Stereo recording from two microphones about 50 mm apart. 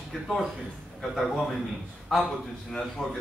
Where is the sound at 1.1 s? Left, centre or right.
Centre.